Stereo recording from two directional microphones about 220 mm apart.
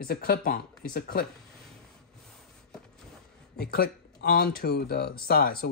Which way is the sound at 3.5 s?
45° left (ahead or behind).